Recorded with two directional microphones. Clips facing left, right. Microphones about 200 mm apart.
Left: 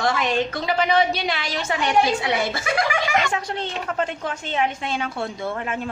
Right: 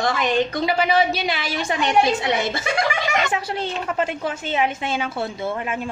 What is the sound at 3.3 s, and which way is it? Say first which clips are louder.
A woman's voice: right 2 dB; 5° right (ahead or behind).